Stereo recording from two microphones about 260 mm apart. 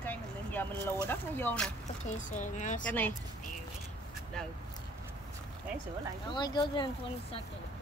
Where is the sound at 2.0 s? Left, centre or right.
Left.